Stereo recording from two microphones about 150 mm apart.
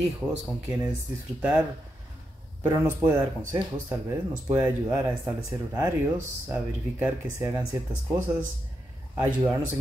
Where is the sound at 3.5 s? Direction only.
10° right (ahead or behind).